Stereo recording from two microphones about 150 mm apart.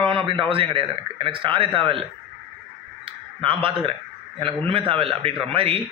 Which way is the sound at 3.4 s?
35° right (ahead or behind).